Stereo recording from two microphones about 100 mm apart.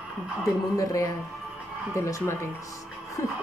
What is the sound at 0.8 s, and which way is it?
A woman's voice, 30° left (ahead or behind).